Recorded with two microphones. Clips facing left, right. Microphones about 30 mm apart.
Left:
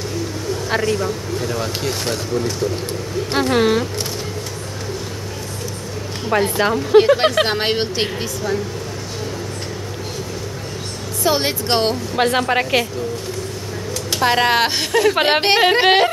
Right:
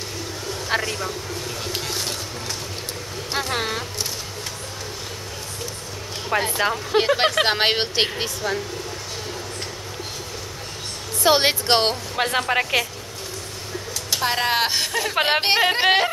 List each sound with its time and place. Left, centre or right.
0.7 s speech: centre
3.3 s a woman's voice: centre
6.2 s speech: centre
7.4 s speech: centre
11.2 s speech: right
12.2 s a woman's voice: centre
14.1 s a woman's voice: centre